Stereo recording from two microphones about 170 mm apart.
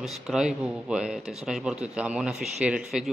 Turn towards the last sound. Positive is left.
turn(degrees=-5)  # may be behind; listen again after turning